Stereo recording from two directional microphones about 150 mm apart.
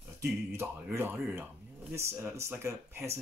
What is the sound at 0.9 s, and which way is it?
Speech, 15° right (ahead or behind).